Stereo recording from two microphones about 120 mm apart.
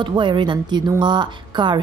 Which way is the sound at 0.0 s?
40° right (ahead or behind).